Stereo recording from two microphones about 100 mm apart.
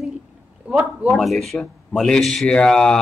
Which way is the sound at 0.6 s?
15° right (ahead or behind).